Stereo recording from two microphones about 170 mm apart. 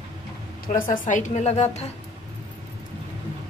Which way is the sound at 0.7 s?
50° left (ahead or behind).